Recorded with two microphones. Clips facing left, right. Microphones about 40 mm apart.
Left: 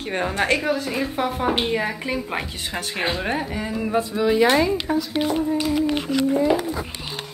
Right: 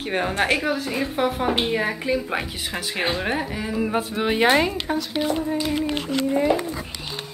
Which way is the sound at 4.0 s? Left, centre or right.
Right.